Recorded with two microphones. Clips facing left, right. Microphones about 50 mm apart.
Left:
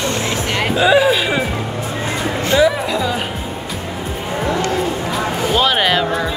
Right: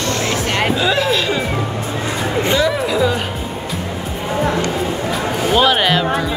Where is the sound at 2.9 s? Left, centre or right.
Centre.